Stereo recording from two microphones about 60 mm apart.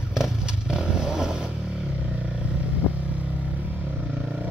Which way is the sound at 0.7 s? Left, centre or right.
Centre.